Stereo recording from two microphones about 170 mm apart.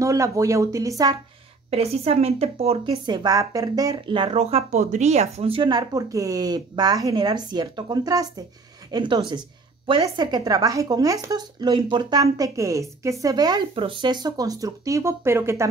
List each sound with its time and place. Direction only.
0.0 s a woman's voice: 20° right (ahead or behind)
1.7 s a woman's voice: 35° right (ahead or behind); by 15.7 s 15° right (ahead or behind)